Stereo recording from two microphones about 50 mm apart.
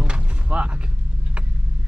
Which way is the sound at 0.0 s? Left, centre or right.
Right.